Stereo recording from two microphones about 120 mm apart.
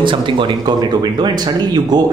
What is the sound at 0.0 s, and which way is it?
Speech, 40° right (ahead or behind).